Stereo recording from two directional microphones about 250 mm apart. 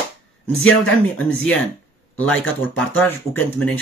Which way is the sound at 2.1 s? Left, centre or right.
Centre.